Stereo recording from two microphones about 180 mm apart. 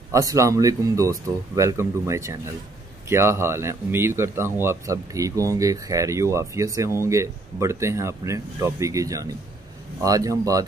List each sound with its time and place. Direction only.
0.1 s speech: 20° right (ahead or behind)